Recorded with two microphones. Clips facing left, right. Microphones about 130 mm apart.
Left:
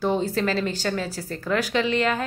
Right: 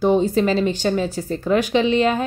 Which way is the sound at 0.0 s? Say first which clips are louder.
Right 6 dB; 20° right (ahead or behind).